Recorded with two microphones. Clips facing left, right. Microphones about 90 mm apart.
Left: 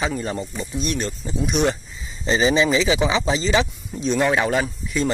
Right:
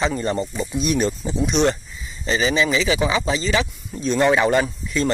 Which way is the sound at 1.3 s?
10° left (ahead or behind).